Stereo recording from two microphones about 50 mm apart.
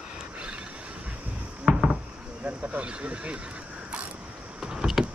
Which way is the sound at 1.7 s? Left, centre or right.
Centre.